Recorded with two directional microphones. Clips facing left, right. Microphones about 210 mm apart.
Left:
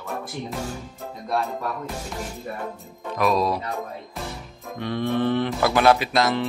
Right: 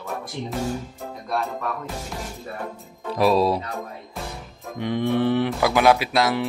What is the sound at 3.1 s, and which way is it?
Speech, 30° right (ahead or behind).